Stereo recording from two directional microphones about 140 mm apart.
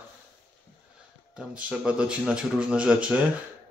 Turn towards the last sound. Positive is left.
turn(degrees=-5)  # may be behind; listen again after turning